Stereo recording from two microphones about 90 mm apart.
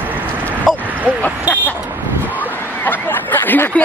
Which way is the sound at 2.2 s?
20° left (ahead or behind).